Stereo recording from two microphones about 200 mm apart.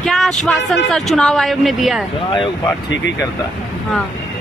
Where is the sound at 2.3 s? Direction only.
25° left (ahead or behind).